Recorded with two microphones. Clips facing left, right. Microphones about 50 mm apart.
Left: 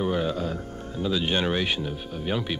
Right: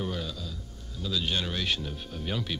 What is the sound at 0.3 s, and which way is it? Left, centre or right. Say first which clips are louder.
Music: left 11 dB; left.